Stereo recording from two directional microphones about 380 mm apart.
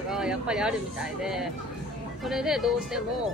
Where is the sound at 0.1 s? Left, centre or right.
Centre.